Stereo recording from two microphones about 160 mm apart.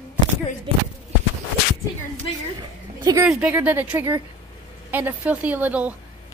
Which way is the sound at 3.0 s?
20° right (ahead or behind).